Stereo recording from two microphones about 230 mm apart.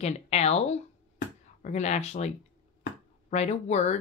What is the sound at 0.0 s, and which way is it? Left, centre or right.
Speech, left.